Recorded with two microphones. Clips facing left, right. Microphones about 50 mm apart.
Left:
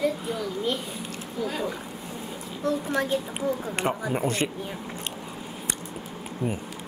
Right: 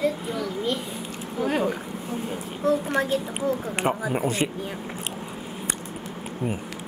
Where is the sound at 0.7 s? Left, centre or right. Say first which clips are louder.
Right 2 dB; centre.